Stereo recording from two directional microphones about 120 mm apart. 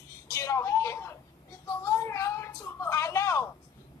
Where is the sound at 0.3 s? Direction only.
25° left (ahead or behind).